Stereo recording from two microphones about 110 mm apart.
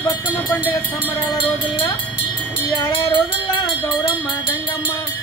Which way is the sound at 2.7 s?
45° left (ahead or behind).